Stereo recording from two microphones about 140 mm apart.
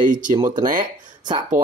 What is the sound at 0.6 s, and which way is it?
Speech, 20° right (ahead or behind).